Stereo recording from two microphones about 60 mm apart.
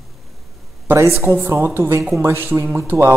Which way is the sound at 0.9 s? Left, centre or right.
Right.